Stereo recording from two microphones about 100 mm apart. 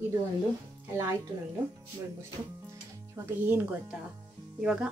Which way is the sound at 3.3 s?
20° right (ahead or behind).